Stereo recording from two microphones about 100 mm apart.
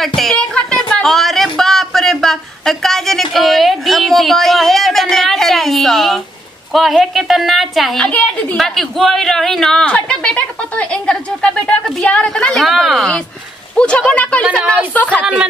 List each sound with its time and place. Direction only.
0.0 s a sound: 5° left (ahead or behind)
6.7 s a woman's voice: centre (ahead or behind)
8.0 s speech: 15° left (ahead or behind)
8.5 s a woman's voice: centre (ahead or behind)
13.7 s speech: 10° left (ahead or behind)